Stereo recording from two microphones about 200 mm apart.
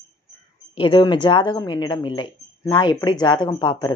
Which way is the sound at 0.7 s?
25° left (ahead or behind).